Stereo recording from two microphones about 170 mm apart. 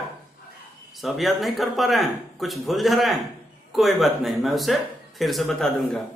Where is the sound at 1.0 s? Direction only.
Centre (ahead or behind).